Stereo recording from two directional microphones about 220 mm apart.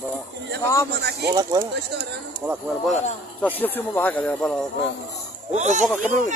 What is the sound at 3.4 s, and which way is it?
Speech, 10° left (ahead or behind).